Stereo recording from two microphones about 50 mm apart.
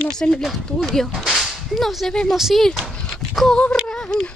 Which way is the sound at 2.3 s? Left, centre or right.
Centre.